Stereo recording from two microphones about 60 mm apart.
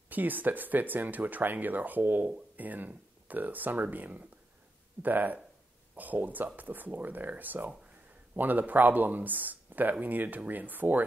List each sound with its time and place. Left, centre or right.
0.1 s speech: right